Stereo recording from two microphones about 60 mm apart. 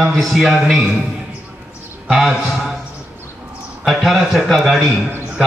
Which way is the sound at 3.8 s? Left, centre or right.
Centre.